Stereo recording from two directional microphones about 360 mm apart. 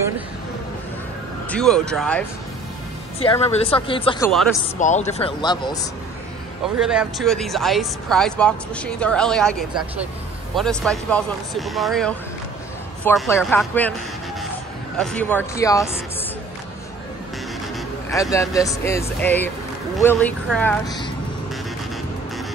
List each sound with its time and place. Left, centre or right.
1.5 s speech: centre
3.3 s speech: centre
6.8 s speech: centre
15.0 s speech: centre
18.1 s speech: centre